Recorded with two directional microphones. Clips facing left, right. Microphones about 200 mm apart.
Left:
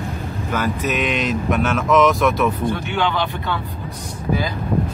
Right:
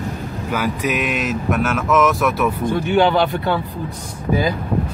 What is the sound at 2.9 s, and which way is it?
Speech, 45° right (ahead or behind).